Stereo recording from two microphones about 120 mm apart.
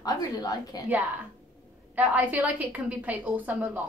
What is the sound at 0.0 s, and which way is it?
Speech, 30° left (ahead or behind).